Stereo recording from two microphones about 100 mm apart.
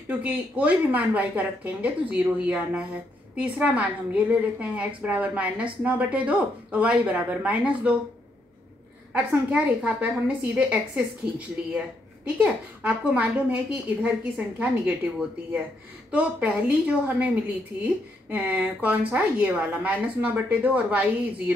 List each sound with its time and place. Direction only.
0.1 s a woman's voice: 15° right (ahead or behind)
9.1 s a woman's voice: 15° right (ahead or behind)
12.4 s a woman's voice: 15° right (ahead or behind)